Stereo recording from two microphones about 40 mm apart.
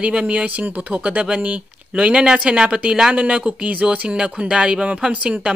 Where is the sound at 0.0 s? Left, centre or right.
Right; by 3.2 s centre.